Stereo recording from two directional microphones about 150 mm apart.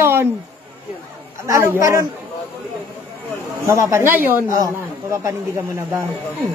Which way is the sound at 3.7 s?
20° right (ahead or behind).